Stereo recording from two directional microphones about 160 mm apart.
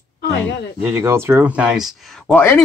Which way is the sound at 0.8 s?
15° right (ahead or behind).